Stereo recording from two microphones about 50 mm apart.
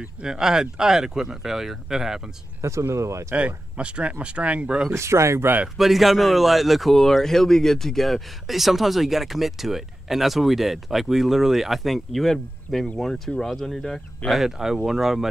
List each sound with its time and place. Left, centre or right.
0.2 s speech: centre
2.9 s speech: right
3.3 s speech: right
4.9 s speech: right
5.8 s a man's voice: centre
14.3 s speech: centre